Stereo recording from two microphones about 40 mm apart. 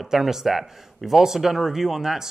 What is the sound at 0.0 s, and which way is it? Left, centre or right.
Speech, centre.